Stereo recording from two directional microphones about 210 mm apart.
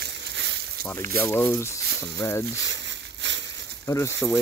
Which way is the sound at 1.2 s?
10° left (ahead or behind).